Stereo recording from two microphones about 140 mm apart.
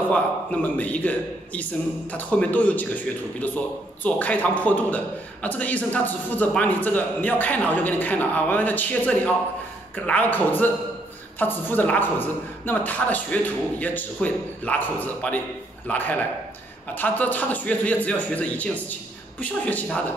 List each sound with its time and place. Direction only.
0.1 s a man's voice: 10° left (ahead or behind)